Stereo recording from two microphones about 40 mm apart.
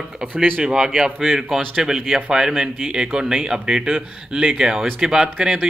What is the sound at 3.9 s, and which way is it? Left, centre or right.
Speech, right.